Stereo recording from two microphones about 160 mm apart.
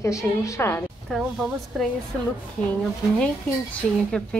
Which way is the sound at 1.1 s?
Centre (ahead or behind).